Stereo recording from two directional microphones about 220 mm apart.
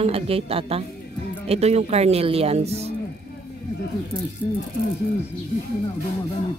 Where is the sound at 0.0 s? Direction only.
25° right (ahead or behind).